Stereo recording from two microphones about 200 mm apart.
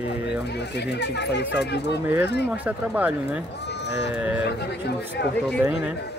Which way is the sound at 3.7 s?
60° left (ahead or behind).